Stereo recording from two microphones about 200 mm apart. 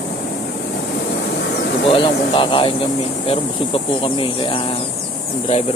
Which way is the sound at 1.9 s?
25° left (ahead or behind).